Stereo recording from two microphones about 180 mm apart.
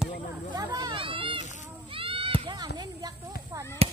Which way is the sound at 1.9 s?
30° right (ahead or behind).